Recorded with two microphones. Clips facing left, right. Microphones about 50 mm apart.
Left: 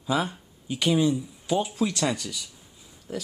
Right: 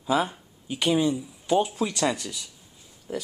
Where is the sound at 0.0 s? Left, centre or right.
Centre.